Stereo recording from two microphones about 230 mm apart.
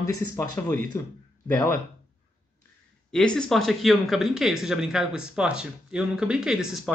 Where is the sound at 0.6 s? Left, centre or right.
Centre.